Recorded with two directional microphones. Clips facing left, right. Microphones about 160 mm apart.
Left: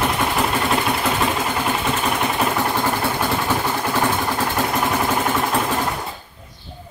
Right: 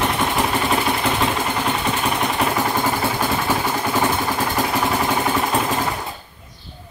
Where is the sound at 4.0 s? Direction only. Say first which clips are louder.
Even; centre (ahead or behind).